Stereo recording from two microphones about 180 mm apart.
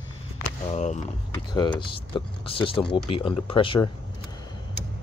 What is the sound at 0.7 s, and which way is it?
Speech, 40° left (ahead or behind).